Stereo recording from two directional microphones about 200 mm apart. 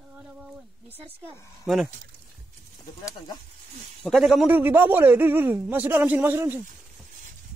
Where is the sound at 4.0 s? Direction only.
Centre (ahead or behind).